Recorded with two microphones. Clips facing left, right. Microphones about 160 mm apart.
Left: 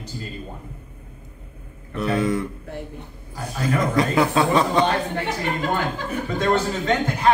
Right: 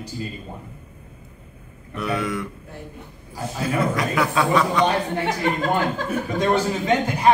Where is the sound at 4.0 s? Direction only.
30° left (ahead or behind).